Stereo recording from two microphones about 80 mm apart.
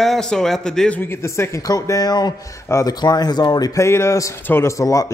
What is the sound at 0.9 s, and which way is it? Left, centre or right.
Speech, left.